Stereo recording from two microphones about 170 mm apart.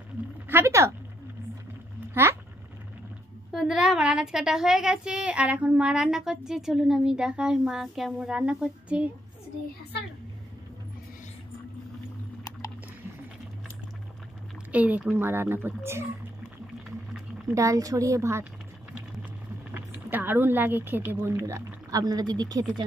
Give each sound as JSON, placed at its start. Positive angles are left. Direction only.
{"t": 0.5, "sound": "a child's voice", "side_deg": -15}
{"t": 3.5, "sound": "a woman's voice", "side_deg": -5}
{"t": 14.7, "sound": "a child's voice", "side_deg": -10}
{"t": 17.6, "sound": "a woman's voice", "side_deg": -20}
{"t": 19.7, "sound": "speech", "side_deg": -10}